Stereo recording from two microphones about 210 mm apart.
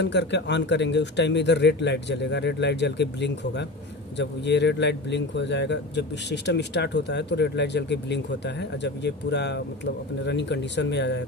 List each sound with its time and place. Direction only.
0.0 s speech: 55° left (ahead or behind)